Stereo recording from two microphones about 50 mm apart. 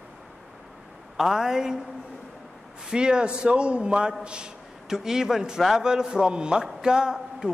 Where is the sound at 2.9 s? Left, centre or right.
Centre.